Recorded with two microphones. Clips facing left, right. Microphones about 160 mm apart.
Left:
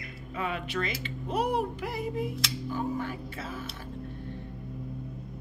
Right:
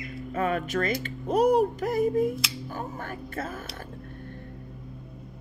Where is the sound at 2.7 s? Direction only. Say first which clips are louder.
Left 7 dB; 50° right (ahead or behind).